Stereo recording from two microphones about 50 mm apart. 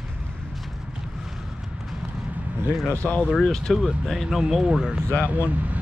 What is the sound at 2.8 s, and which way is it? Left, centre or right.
Speech, left.